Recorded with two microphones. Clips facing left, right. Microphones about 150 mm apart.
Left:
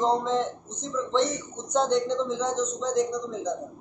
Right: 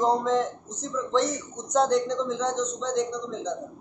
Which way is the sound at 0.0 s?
Centre (ahead or behind).